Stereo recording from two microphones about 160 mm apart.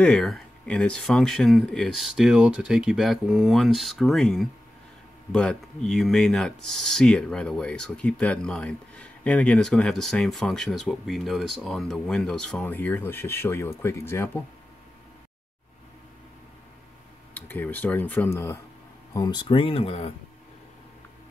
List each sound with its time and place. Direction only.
0.0 s speech: 5° left (ahead or behind)
17.3 s speech: 10° left (ahead or behind)
19.4 s speech: 35° left (ahead or behind)